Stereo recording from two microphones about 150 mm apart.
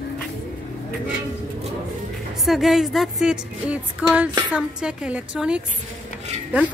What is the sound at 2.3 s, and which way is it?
A woman's voice, centre (ahead or behind).